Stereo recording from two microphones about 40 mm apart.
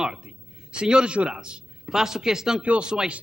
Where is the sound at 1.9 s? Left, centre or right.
Centre.